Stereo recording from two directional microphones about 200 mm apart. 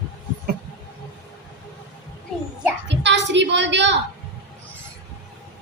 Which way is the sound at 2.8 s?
60° right (ahead or behind).